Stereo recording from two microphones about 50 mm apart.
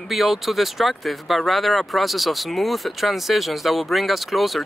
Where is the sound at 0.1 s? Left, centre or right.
Centre.